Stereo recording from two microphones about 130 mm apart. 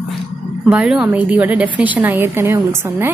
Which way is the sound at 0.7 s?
5° right (ahead or behind).